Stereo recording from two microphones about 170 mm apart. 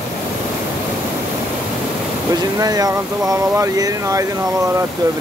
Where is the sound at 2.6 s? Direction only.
20° right (ahead or behind).